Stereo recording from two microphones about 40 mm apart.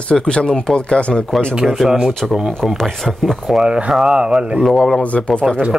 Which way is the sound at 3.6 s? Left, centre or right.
Right.